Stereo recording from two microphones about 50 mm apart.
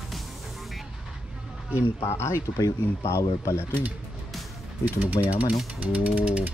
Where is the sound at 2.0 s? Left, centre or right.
Left.